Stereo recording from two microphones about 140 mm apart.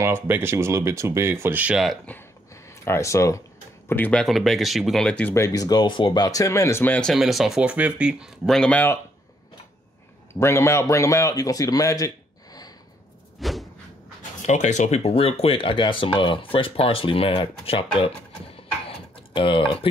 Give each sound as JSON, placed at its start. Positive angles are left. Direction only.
{"t": 0.0, "sound": "speech", "side_deg": -15}
{"t": 2.0, "sound": "a sound", "side_deg": 15}
{"t": 3.9, "sound": "speech", "side_deg": 10}
{"t": 5.3, "sound": "speech", "side_deg": 25}
{"t": 10.4, "sound": "a man's voice", "side_deg": 20}
{"t": 13.4, "sound": "a sound", "side_deg": 0}
{"t": 14.4, "sound": "speech", "side_deg": 55}